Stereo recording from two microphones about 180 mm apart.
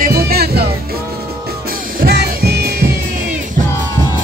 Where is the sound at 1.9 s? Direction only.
65° right (ahead or behind).